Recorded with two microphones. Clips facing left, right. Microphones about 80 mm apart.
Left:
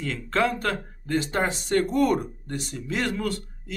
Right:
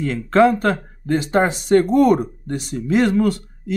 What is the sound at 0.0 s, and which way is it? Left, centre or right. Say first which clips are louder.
Speech: right 10 dB; right.